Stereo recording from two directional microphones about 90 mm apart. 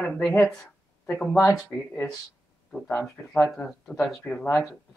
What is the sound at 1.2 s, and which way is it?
Speech, 10° left (ahead or behind).